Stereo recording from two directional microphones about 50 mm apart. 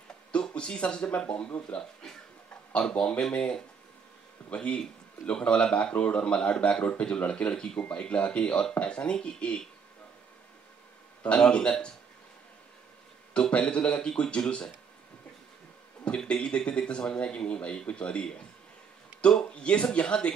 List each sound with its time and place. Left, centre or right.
0.3 s speech: centre
4.5 s speech: left
11.2 s speech: left
13.3 s speech: left
16.3 s speech: centre